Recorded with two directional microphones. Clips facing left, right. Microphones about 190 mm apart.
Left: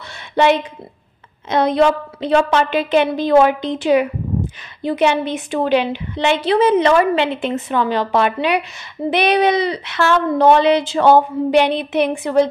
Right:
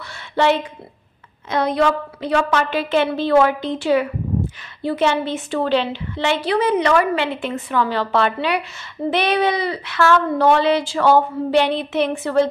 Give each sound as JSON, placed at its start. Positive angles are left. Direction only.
{"t": 0.4, "sound": "a woman's voice", "side_deg": 15}